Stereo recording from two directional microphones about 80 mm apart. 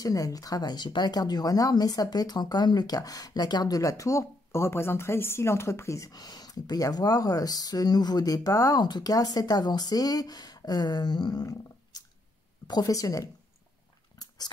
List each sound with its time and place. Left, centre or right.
0.0 s speech: left
12.6 s speech: left
14.1 s a sound: left